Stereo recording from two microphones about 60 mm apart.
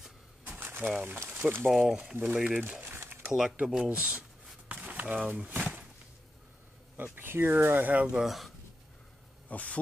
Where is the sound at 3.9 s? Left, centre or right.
Centre.